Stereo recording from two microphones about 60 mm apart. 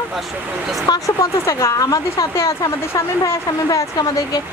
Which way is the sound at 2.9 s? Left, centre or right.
Left.